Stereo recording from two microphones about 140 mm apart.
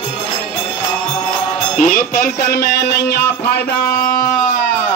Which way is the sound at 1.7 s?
80° left.